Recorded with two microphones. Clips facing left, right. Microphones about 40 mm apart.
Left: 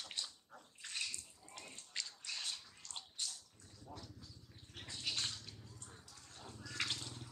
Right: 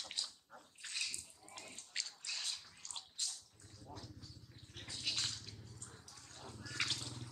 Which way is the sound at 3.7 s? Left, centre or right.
Centre.